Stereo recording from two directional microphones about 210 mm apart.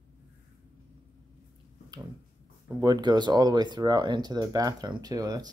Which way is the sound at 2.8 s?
20° right (ahead or behind).